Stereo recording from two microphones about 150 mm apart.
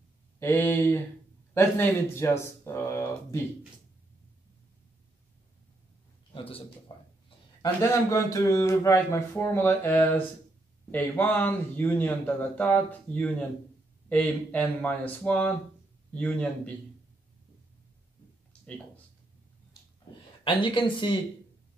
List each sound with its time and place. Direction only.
0.4 s speech: 15° left (ahead or behind)
6.3 s a man's voice: 40° left (ahead or behind)
6.9 s a sound: 30° left (ahead or behind)
7.8 s speech: 20° left (ahead or behind)
20.4 s speech: 35° left (ahead or behind)